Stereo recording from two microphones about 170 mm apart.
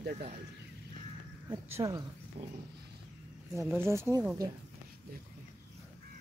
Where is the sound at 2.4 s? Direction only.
35° right (ahead or behind).